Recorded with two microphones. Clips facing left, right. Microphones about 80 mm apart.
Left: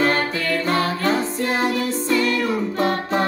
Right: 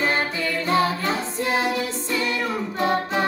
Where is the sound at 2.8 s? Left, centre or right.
Left.